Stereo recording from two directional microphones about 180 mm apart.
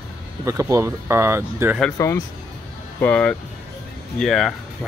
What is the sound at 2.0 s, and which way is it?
Speech, 15° left (ahead or behind).